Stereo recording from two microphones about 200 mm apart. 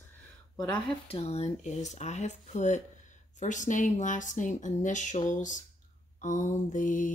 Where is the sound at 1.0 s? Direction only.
30° left (ahead or behind).